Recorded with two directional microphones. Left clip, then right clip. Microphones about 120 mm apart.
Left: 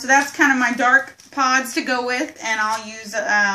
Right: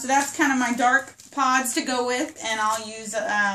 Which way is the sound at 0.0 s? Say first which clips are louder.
Left 6 dB; 15° right (ahead or behind).